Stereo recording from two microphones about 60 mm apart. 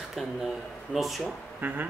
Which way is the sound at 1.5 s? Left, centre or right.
Right.